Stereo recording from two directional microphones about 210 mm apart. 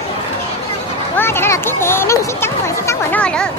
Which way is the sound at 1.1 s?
10° left (ahead or behind).